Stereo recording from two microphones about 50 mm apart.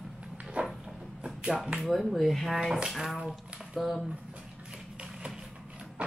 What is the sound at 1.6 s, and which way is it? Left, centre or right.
Speech, centre.